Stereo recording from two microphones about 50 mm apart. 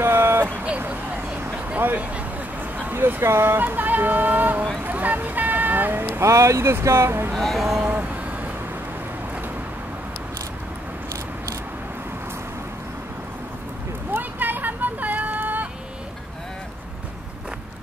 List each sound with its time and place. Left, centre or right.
0.0 s vehicle: right
1.8 s speech: right
2.1 s vehicle: right
2.9 s speech: right
3.6 s a sound: right
6.0 s speech: right
7.1 s speech: right
7.3 s speech: centre
7.8 s vehicle: right
14.1 s vehicle: right